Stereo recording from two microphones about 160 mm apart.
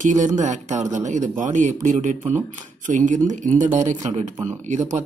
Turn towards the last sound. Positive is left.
turn(degrees=-50)  # may be behind; listen again after turning